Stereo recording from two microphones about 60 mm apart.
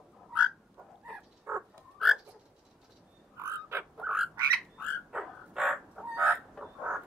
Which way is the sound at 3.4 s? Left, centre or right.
Right.